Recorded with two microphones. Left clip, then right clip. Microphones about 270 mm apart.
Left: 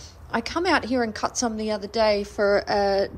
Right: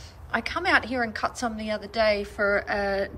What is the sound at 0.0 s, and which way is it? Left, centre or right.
A woman's voice, centre.